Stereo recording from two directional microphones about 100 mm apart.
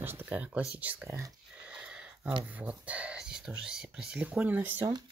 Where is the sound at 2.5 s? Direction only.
15° right (ahead or behind).